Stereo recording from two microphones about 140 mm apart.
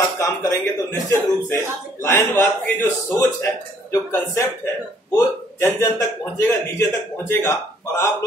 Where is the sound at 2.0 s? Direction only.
20° left (ahead or behind).